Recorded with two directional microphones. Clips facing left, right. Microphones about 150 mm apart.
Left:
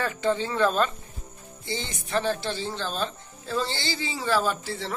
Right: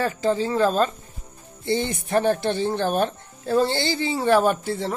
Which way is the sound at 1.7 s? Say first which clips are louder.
Right 8 dB; 60° right (ahead or behind).